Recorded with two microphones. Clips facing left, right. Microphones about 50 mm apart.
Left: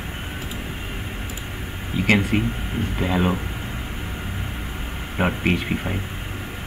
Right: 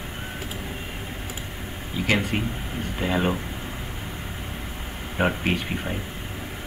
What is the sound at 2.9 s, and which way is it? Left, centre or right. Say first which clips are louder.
Speech: left 1 dB; centre.